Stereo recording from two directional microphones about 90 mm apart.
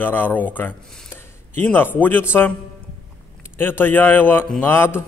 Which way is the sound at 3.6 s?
25° left (ahead or behind).